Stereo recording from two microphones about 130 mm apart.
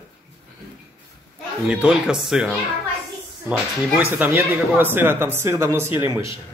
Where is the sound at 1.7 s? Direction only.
5° right (ahead or behind).